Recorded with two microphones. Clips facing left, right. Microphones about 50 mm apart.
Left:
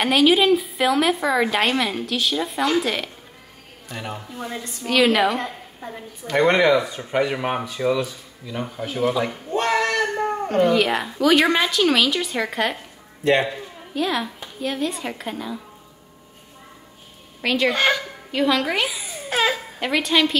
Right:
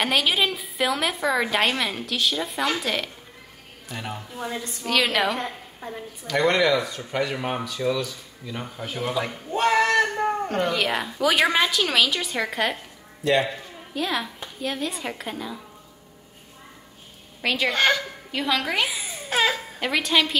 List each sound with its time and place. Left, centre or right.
0.0 s speech: centre
6.2 s speech: left
8.5 s speech: centre
13.2 s speech: left
13.9 s speech: centre
17.4 s a woman's voice: centre